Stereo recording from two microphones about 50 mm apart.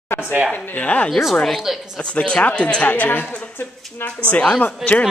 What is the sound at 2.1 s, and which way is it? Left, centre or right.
Speech, left.